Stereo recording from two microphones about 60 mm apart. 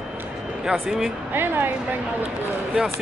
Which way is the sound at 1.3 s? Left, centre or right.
Right.